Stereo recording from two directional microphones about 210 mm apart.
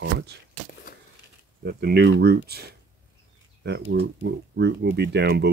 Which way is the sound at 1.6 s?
50° right (ahead or behind).